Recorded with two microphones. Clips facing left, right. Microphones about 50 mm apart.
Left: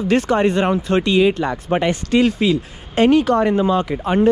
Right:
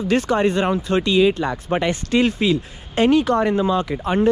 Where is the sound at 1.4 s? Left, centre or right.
Left.